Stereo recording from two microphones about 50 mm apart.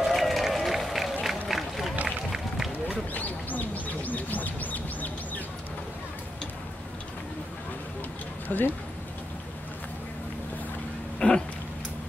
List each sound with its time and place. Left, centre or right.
0.0 s music: centre
1.2 s a sound: centre
2.3 s run: centre
3.1 s bird: left
8.5 s speech: left
11.1 s a sound: centre